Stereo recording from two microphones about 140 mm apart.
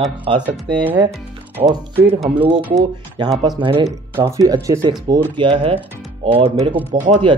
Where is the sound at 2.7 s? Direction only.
30° right (ahead or behind).